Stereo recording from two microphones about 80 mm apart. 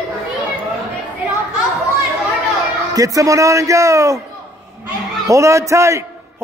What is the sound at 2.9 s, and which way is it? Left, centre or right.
A man's voice, right.